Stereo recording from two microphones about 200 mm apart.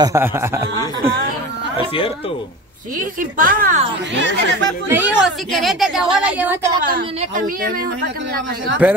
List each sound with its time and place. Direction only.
0.0 s speech: 15° right (ahead or behind)
3.0 s a woman's voice: 45° right (ahead or behind)
4.1 s speech: 65° right (ahead or behind)
4.8 s speech: 10° right (ahead or behind)
5.5 s a woman's voice: centre (ahead or behind)
7.2 s a woman's voice: 40° right (ahead or behind)
8.8 s speech: 10° right (ahead or behind)